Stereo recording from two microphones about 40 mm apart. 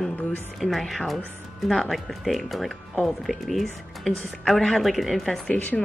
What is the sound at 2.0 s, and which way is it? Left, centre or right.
Speech, centre.